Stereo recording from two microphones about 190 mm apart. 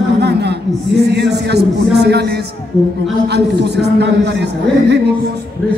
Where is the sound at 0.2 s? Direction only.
60° right (ahead or behind).